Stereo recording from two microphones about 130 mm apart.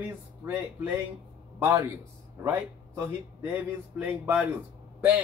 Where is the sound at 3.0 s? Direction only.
15° right (ahead or behind).